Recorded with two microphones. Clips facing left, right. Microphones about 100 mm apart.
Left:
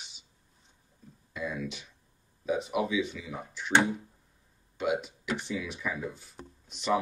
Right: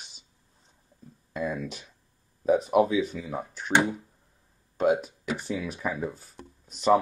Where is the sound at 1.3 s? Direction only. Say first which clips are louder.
Right 4 dB; 40° right (ahead or behind).